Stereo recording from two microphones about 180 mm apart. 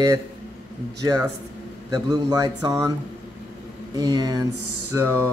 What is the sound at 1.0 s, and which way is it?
Speech, 20° right (ahead or behind).